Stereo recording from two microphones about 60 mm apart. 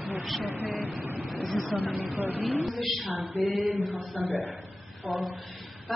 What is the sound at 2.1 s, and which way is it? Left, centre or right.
Speech, right.